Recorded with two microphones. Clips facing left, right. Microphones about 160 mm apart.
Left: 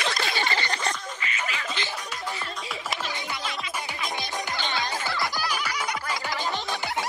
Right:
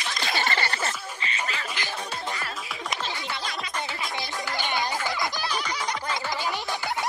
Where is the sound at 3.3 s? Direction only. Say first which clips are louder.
Even; 40° right (ahead or behind).